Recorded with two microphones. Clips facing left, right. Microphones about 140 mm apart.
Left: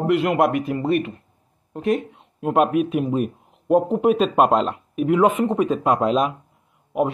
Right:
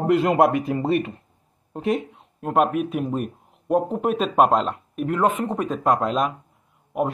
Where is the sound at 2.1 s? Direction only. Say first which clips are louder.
Left 2 dB; 5° left (ahead or behind).